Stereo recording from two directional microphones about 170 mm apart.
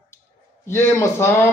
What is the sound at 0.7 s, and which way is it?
Speech, 15° left (ahead or behind).